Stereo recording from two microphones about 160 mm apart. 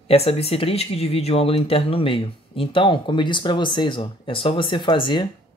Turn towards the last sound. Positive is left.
turn(degrees=30)  # may be behind; listen again after turning